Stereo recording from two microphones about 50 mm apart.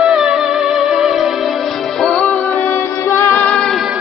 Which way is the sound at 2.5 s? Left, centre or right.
Left.